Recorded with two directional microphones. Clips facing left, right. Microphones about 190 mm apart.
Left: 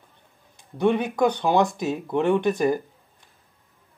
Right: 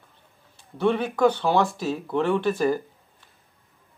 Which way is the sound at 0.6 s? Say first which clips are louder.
Left 1 dB; 15° left (ahead or behind).